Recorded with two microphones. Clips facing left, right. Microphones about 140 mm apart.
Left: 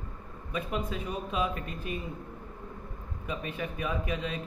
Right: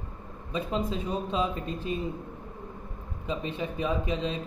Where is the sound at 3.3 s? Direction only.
25° right (ahead or behind).